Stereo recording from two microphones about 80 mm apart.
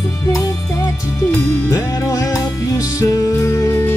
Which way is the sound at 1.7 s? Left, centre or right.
Left.